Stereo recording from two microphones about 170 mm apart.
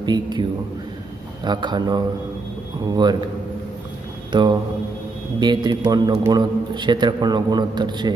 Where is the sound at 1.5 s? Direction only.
25° right (ahead or behind).